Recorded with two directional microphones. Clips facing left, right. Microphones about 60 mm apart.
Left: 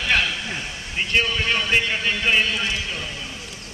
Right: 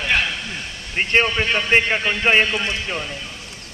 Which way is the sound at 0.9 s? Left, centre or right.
Right.